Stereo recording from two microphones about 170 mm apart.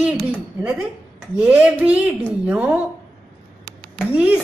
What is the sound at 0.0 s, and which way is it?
A woman's voice, 5° right (ahead or behind).